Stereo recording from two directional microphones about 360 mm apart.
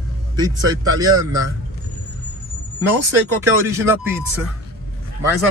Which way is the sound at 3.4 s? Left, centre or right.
Centre.